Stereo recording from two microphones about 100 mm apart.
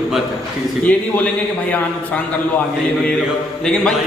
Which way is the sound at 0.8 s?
10° left (ahead or behind).